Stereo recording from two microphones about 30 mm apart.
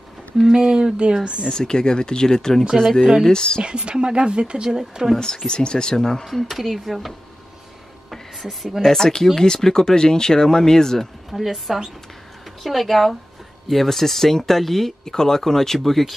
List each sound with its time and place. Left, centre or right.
0.5 s speech: right
1.2 s speech: right
1.5 s speech: left
2.8 s speech: centre
3.3 s speech: left
3.6 s speech: right
4.7 s speech: right
5.1 s speech: left
6.5 s speech: centre
8.1 s a sound: centre
8.8 s speech: centre
11.3 s speech: centre